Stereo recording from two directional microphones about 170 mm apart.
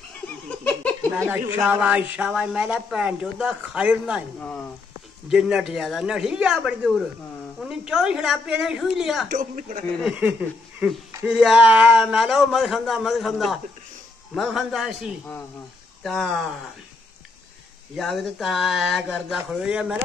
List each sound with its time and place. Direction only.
1.5 s a man's voice: 10° right (ahead or behind)
5.3 s a man's voice: 5° right (ahead or behind)
9.3 s a man's voice: 50° right (ahead or behind)
10.0 s a man's voice: 5° right (ahead or behind)
17.9 s a man's voice: centre (ahead or behind)